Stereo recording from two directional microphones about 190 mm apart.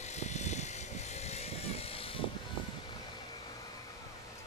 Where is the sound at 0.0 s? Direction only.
35° left (ahead or behind).